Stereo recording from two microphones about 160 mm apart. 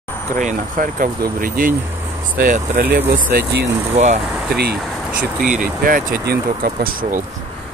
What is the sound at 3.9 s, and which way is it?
Speech, 45° right (ahead or behind).